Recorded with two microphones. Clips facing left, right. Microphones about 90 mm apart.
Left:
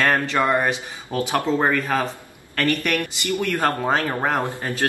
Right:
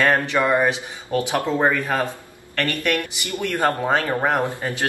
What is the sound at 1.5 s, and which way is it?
Speech, 5° right (ahead or behind).